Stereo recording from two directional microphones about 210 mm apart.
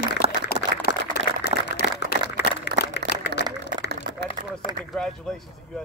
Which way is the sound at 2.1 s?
50° right (ahead or behind).